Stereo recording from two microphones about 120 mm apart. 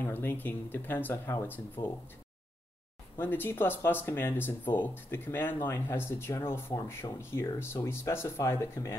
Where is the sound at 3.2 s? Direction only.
15° left (ahead or behind).